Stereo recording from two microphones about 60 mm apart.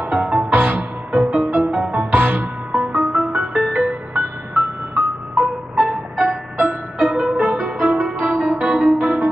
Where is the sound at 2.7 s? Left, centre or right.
Centre.